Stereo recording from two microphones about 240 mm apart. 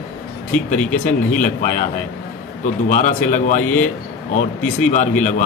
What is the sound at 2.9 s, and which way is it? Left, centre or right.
Speech, left.